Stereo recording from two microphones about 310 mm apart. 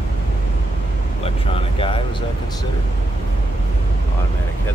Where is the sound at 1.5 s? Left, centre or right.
Centre.